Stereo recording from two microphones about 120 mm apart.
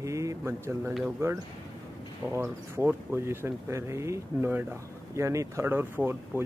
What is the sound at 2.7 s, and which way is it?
Speech, 20° right (ahead or behind).